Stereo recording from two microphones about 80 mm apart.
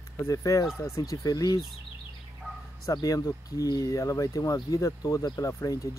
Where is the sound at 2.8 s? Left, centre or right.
Left.